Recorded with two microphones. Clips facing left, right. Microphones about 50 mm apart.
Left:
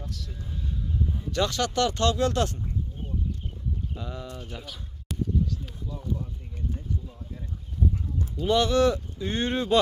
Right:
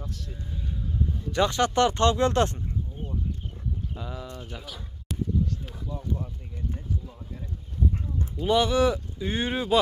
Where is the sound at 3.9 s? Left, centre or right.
Centre.